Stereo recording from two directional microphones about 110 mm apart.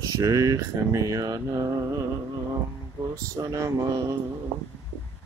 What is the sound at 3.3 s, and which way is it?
Speech, 30° right (ahead or behind).